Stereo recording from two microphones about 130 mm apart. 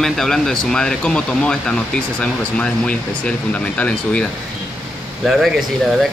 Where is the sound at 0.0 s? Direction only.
5° left (ahead or behind).